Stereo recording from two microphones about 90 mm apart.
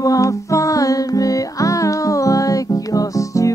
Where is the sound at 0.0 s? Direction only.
40° left (ahead or behind).